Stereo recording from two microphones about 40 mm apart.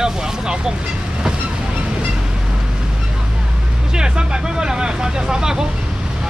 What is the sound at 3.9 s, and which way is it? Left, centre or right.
Speech, right.